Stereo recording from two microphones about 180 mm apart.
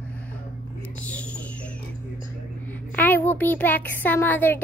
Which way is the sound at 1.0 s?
5° left (ahead or behind).